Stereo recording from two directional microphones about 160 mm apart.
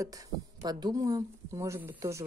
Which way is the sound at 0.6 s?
25° right (ahead or behind).